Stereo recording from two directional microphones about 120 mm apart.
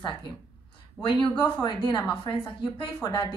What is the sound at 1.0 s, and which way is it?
A woman's voice, 40° left (ahead or behind).